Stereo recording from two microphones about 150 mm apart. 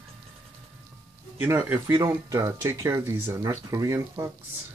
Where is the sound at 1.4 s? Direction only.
10° right (ahead or behind).